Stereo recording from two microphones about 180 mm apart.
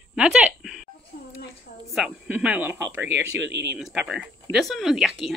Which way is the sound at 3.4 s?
75° right (ahead or behind).